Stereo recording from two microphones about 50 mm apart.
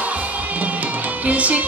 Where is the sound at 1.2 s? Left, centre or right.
Right.